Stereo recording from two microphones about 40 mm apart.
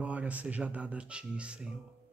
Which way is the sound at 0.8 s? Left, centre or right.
Right.